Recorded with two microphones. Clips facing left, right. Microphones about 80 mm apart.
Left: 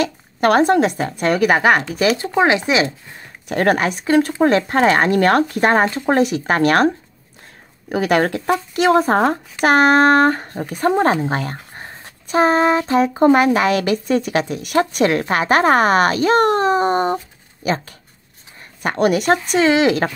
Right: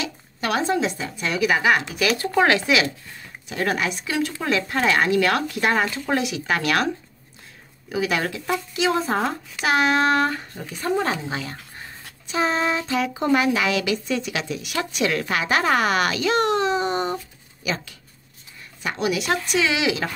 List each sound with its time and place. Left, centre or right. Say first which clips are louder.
0.0 s a child's voice: left 11 dB; left
2.0 s speech: left 5 dB; left
2.3 s speech: left 1 dB; left
3.4 s speech: left 7 dB; left
7.9 s a child's voice: left 7 dB; left
11.5 s a child's voice: left 5 dB; left